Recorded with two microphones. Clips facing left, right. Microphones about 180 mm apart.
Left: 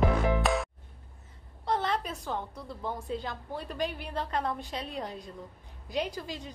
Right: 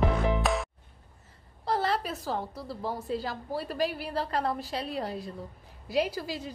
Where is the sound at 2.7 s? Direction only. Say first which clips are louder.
Right 2 dB; 35° right (ahead or behind).